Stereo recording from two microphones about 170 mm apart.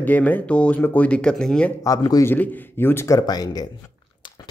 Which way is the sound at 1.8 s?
20° left (ahead or behind).